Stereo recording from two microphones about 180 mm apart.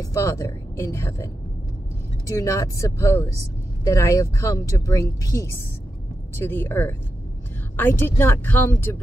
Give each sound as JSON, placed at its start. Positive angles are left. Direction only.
{"t": 0.0, "sound": "speech", "side_deg": 15}